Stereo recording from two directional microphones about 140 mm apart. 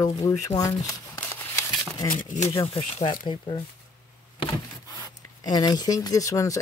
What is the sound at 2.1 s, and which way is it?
Speech, 60° left (ahead or behind).